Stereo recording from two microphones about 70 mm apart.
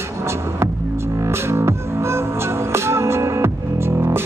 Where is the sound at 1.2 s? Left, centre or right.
Right.